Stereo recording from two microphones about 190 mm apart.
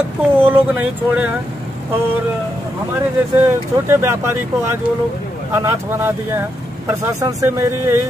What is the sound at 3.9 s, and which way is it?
Speech, 15° right (ahead or behind).